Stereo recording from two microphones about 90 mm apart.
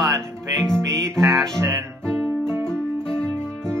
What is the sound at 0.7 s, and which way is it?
Music, 5° left (ahead or behind).